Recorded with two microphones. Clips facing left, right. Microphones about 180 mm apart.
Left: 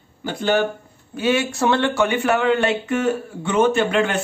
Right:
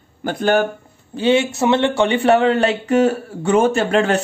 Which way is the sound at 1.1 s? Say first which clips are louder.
Right 4 dB; 30° right (ahead or behind).